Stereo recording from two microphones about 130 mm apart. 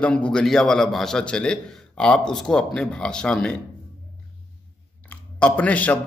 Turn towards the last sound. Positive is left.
turn(degrees=10)  # may be behind; listen again after turning